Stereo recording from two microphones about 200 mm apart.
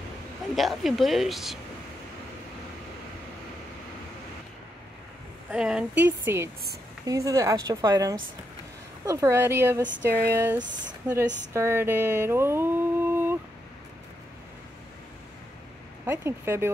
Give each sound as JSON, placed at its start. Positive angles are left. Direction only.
{"t": 0.6, "sound": "speech", "side_deg": 0}
{"t": 5.5, "sound": "a woman's voice", "side_deg": -5}
{"t": 11.5, "sound": "a sound", "side_deg": -10}
{"t": 16.1, "sound": "a woman's voice", "side_deg": -10}